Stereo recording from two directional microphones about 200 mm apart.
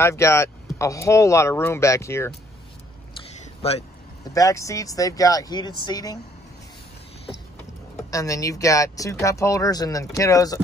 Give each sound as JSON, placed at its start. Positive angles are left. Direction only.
{"t": 0.0, "sound": "speech", "side_deg": 15}
{"t": 3.6, "sound": "speech", "side_deg": 30}
{"t": 4.3, "sound": "speech", "side_deg": 15}
{"t": 8.1, "sound": "speech", "side_deg": 15}